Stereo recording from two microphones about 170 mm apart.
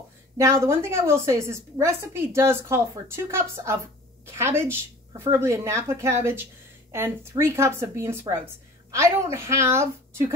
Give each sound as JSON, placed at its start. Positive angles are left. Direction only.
{"t": 0.4, "sound": "a woman's voice", "side_deg": -15}